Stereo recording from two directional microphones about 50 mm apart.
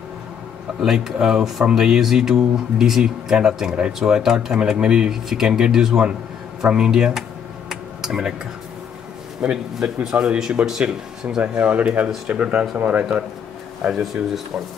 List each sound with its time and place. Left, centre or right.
0.7 s speech: centre
7.7 s a sound: centre
9.4 s speech: right
11.3 s speech: right
13.8 s speech: centre